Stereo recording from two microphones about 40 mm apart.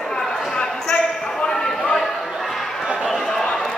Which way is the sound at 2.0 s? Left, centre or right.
Centre.